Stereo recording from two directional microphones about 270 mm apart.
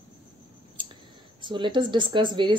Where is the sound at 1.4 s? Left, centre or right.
Centre.